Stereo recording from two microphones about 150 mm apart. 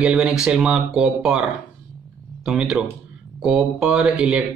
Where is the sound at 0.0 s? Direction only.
5° right (ahead or behind).